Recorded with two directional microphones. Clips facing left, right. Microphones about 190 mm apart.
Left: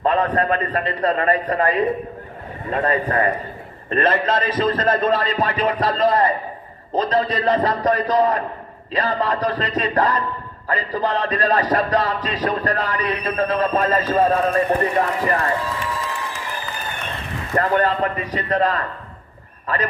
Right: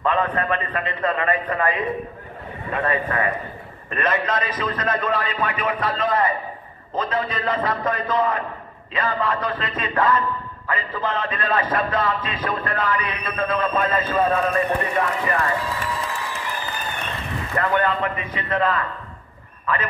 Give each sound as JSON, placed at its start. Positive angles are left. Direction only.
{"t": 0.0, "sound": "a man's voice", "side_deg": 35}
{"t": 17.6, "sound": "speech", "side_deg": 35}